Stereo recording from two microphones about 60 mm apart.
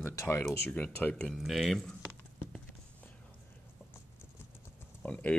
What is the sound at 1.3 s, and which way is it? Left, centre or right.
Speech, centre.